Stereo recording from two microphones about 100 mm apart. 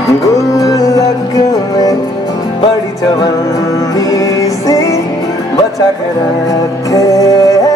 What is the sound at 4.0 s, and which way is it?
Music, 35° left (ahead or behind).